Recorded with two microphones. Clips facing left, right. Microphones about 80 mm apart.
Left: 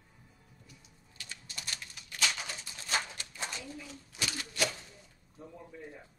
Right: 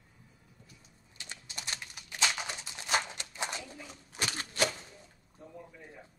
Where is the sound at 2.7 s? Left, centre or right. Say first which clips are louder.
Right 3 dB; centre.